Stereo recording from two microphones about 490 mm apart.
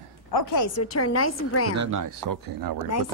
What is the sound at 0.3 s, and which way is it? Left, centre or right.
A woman's voice, left.